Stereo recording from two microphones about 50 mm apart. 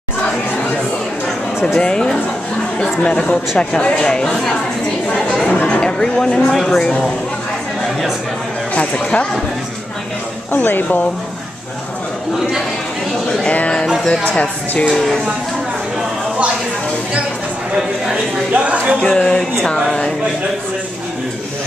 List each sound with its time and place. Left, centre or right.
1.8 s speech: centre
5.0 s a sound: centre
6.4 s speech: centre
8.7 s speech: left
10.5 s speech: left
13.5 s speech: left
14.9 s speech: centre
18.1 s speech: right
18.9 s speech: centre